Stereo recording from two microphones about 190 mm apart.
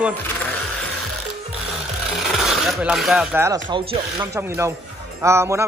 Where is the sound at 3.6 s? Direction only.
25° right (ahead or behind).